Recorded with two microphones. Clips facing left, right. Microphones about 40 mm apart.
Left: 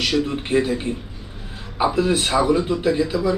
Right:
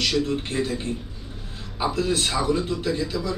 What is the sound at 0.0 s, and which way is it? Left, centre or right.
Speech, centre.